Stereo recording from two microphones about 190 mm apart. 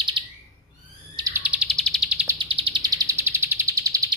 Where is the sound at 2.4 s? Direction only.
25° right (ahead or behind).